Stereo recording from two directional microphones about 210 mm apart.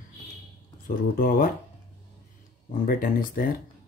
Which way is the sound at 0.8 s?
40° left (ahead or behind).